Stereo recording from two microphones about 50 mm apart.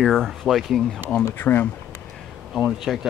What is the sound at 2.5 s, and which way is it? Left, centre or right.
Speech, centre.